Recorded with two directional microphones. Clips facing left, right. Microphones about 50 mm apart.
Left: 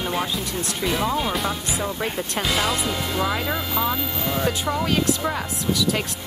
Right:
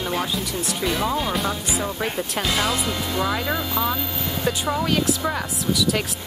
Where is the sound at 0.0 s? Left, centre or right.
Centre.